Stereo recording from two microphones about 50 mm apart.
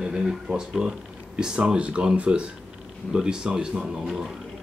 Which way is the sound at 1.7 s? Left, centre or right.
Right.